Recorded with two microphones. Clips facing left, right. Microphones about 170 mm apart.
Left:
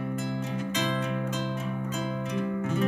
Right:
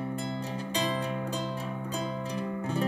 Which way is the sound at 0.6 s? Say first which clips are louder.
Even; 35° right (ahead or behind).